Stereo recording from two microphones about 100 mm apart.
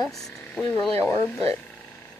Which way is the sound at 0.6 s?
30° left (ahead or behind).